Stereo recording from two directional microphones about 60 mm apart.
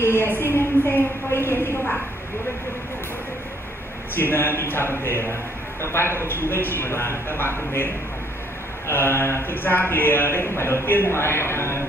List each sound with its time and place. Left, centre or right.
0.0 s a man's voice: left
4.1 s a man's voice: left